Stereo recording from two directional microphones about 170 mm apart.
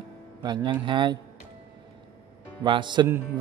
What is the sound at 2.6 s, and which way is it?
Speech, 25° right (ahead or behind).